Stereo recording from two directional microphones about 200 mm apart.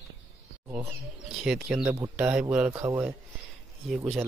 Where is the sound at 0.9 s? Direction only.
5° right (ahead or behind).